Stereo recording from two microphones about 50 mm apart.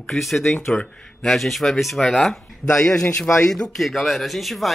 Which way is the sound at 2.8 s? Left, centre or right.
Centre.